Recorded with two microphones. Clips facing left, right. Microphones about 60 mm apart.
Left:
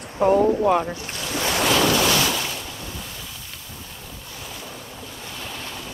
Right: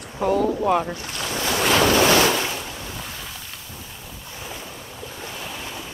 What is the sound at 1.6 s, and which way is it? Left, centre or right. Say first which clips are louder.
Waves: right 3 dB; right.